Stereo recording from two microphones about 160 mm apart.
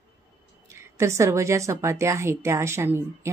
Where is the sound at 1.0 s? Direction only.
15° right (ahead or behind).